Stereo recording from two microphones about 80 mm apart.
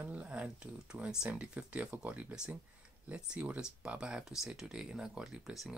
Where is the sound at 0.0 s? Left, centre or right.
Centre.